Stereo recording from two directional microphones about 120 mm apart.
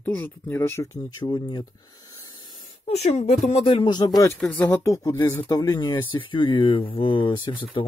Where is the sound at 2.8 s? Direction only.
65° left (ahead or behind).